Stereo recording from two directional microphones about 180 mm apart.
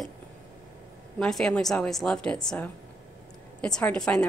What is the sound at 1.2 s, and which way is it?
A woman's voice, 5° left (ahead or behind).